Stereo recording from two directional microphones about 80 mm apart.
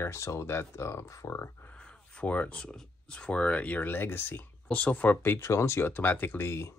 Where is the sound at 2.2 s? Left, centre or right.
Centre.